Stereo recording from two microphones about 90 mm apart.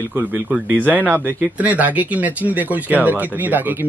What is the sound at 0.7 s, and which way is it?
Speech, 20° right (ahead or behind).